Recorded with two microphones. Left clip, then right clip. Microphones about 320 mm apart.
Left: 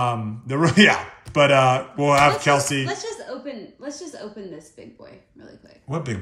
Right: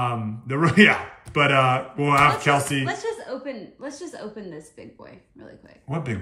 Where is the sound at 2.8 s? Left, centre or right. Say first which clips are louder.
Right 1 dB; right.